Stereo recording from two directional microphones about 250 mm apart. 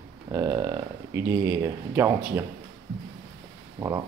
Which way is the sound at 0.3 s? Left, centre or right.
Centre.